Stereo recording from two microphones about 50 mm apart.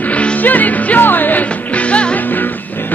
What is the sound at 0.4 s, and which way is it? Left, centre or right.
Music, left.